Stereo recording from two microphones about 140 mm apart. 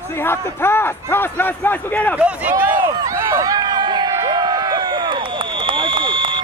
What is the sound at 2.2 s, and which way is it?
Speech, 10° right (ahead or behind).